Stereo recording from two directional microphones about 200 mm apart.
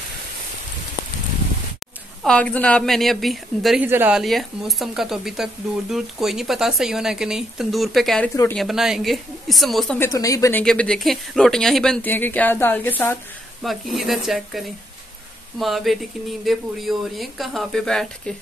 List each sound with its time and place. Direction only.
2.2 s a woman's voice: 5° left (ahead or behind)
9.9 s speech: 15° left (ahead or behind)
10.6 s a woman's voice: 5° left (ahead or behind)
15.6 s a woman's voice: centre (ahead or behind)